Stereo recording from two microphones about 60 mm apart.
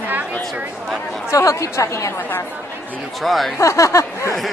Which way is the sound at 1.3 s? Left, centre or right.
Left.